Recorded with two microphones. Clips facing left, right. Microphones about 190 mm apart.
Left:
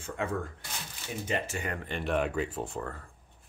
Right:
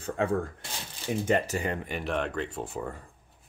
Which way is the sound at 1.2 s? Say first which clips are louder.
Right 6 dB; 45° right (ahead or behind).